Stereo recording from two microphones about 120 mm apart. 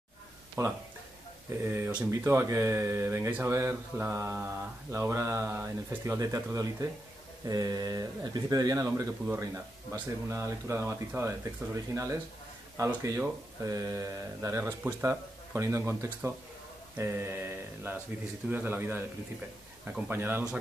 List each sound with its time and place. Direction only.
0.6 s speech: 25° right (ahead or behind)
20.1 s speech: 20° right (ahead or behind)